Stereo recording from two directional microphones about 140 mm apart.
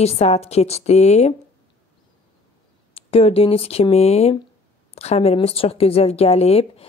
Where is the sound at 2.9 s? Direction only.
45° left (ahead or behind).